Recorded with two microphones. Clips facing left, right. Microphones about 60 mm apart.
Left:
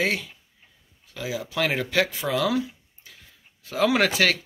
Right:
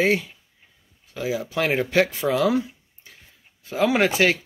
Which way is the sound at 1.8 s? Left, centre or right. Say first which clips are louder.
Right 4 dB; right.